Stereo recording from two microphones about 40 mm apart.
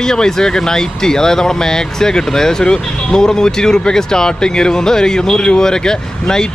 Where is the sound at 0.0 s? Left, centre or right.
Centre.